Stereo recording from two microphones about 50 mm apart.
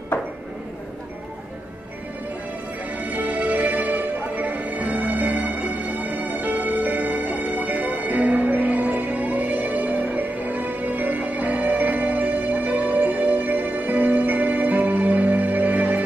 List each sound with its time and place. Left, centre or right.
3.1 s music: right